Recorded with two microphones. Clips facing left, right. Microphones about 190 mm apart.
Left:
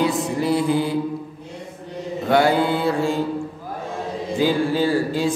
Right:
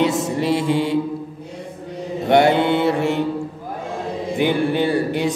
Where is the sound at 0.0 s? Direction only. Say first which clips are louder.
Right 2 dB; 25° right (ahead or behind).